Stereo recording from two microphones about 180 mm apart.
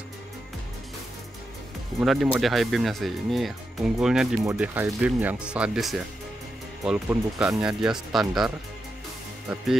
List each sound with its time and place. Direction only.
2.0 s speech: centre (ahead or behind)